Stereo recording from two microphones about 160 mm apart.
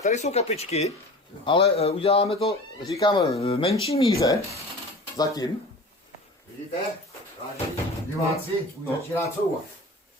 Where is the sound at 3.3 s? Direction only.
40° left (ahead or behind).